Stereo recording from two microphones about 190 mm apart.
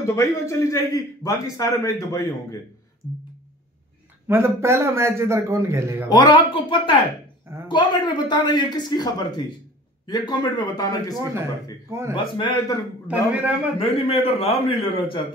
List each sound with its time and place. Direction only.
0.0 s a man's voice: 15° left (ahead or behind)
4.3 s a man's voice: 15° right (ahead or behind)
6.0 s a man's voice: 25° left (ahead or behind)
11.9 s a man's voice: 15° right (ahead or behind)
12.2 s a man's voice: 25° left (ahead or behind)
13.1 s a man's voice: 10° right (ahead or behind)
13.7 s a man's voice: 30° left (ahead or behind)